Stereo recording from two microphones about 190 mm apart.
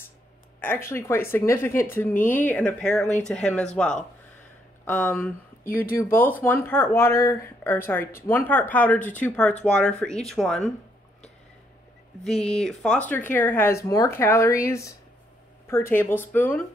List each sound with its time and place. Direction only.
0.6 s speech: 10° left (ahead or behind)
12.3 s speech: 5° left (ahead or behind)